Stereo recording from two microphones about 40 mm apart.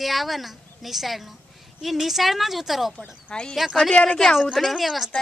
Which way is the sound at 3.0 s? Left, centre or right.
Left.